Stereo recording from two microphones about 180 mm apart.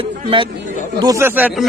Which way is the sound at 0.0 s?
30° right (ahead or behind).